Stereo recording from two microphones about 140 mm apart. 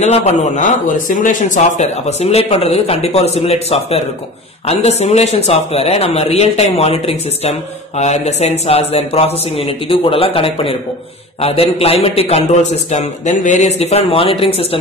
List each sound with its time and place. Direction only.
0.0 s speech: 50° left (ahead or behind)